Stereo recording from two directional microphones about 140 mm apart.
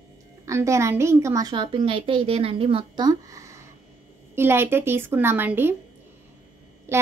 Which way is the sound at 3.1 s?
25° right (ahead or behind).